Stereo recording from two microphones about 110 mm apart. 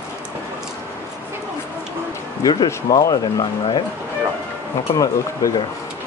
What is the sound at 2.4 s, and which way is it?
Speech, 40° left (ahead or behind).